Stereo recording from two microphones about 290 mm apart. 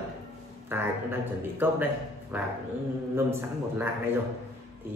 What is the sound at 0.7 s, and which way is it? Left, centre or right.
A man's voice, centre.